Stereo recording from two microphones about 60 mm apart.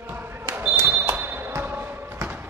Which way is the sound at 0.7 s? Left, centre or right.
Right.